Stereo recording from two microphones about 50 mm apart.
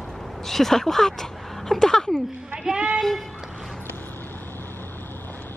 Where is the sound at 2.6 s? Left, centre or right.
Centre.